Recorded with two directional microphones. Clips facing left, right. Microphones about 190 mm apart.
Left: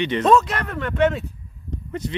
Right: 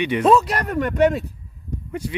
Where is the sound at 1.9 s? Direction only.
10° right (ahead or behind).